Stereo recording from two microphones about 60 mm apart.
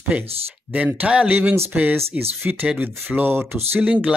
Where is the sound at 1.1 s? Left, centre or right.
Centre; by 3.7 s right.